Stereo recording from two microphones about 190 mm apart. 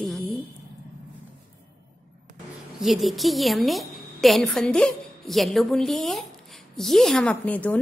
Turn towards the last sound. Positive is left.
turn(degrees=5)  # may be behind; listen again after turning